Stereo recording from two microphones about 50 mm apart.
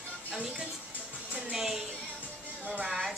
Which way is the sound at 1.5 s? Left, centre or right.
Centre.